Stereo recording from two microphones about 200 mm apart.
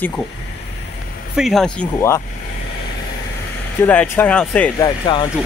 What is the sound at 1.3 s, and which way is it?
Speech, centre (ahead or behind).